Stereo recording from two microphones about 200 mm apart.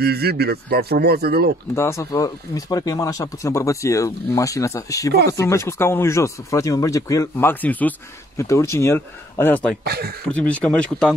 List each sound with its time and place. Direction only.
0.0 s speech: 50° right (ahead or behind)
1.8 s speech: 15° left (ahead or behind)
9.8 s speech: 50° right (ahead or behind)
10.3 s speech: 5° left (ahead or behind)